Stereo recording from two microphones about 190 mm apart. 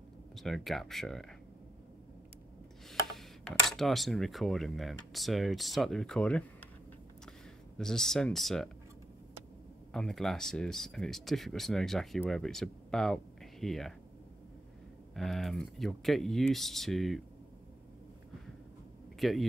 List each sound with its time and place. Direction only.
0.4 s speech: centre (ahead or behind)
3.1 s speech: centre (ahead or behind)
7.7 s speech: 5° left (ahead or behind)
9.9 s speech: centre (ahead or behind)
15.1 s speech: centre (ahead or behind)
19.1 s a sound: centre (ahead or behind)